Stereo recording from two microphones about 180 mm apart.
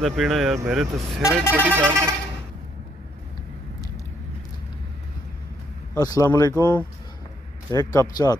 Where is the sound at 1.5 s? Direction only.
10° right (ahead or behind).